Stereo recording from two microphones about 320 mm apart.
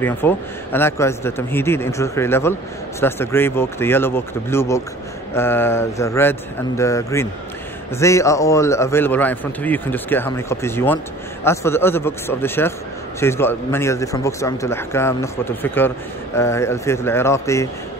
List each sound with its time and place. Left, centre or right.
0.0 s a man's voice: centre